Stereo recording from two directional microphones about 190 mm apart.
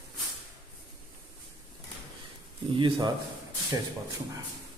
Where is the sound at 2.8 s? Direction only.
25° right (ahead or behind).